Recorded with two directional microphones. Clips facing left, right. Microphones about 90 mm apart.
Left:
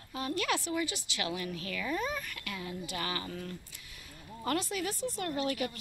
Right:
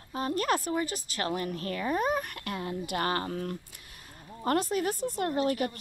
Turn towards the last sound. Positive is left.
turn(degrees=-45)  # may be behind; listen again after turning